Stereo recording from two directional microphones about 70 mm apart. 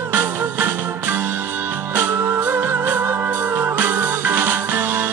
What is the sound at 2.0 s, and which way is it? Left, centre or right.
Music, right.